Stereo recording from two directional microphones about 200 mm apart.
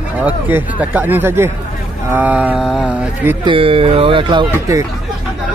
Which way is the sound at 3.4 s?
25° right (ahead or behind).